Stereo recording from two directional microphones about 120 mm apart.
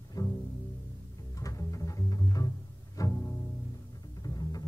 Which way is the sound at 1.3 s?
25° left (ahead or behind).